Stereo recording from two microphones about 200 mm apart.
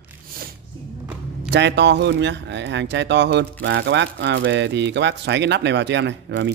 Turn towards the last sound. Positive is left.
turn(degrees=-60)  # may be behind; listen again after turning